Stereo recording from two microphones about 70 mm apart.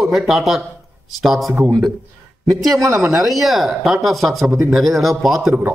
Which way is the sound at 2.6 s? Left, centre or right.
Right.